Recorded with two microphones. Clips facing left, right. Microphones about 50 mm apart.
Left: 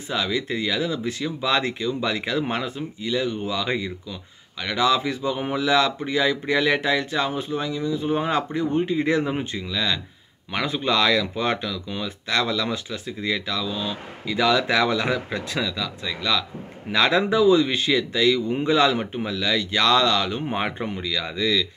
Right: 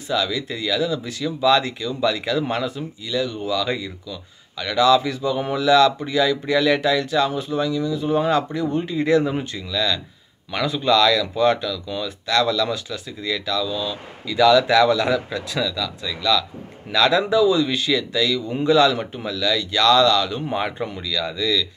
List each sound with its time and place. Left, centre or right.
0.1 s speech: left